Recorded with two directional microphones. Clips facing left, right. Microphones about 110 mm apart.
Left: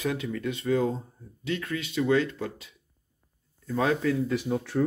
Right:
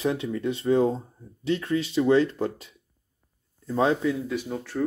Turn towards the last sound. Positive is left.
turn(degrees=5)  # may be behind; listen again after turning